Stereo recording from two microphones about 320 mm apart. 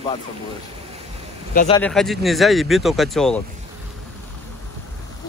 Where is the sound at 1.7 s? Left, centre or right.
Centre.